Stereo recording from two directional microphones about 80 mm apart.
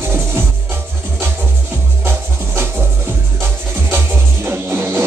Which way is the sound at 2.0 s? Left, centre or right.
Right.